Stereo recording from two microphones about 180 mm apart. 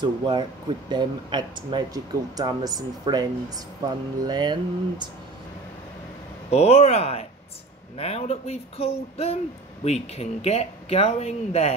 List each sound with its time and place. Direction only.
0.0 s speech: 25° right (ahead or behind)
6.5 s speech: 35° left (ahead or behind)